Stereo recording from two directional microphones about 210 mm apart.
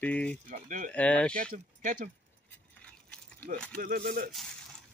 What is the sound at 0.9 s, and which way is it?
Speech, 5° left (ahead or behind).